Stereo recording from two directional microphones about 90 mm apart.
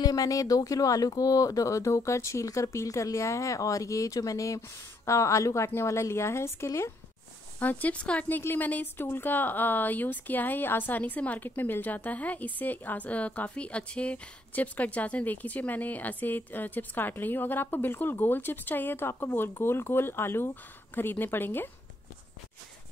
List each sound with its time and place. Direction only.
0.0 s speech: 45° left (ahead or behind)
7.5 s speech: 15° left (ahead or behind)